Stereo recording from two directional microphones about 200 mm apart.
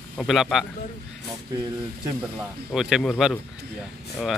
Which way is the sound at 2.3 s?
5° right (ahead or behind).